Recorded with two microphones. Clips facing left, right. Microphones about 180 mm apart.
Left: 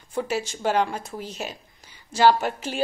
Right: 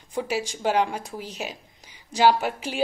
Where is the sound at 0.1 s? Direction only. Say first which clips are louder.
Left 1 dB; 15° right (ahead or behind).